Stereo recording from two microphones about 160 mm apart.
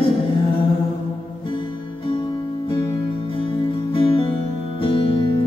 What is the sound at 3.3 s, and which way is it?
Music, 35° left (ahead or behind).